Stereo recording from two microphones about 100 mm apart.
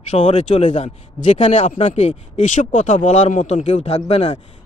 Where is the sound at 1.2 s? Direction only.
65° left (ahead or behind).